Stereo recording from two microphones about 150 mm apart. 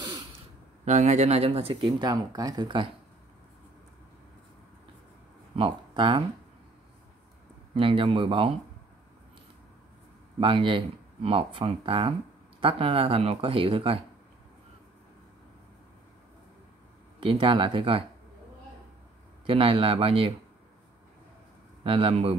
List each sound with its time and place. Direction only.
0.8 s speech: 50° right (ahead or behind); by 2.9 s 30° right (ahead or behind)
5.6 s speech: 35° right (ahead or behind)
7.7 s speech: 35° right (ahead or behind)
10.4 s speech: 35° right (ahead or behind)
17.2 s speech: 35° right (ahead or behind)
19.4 s speech: 35° right (ahead or behind)
21.8 s speech: 40° right (ahead or behind)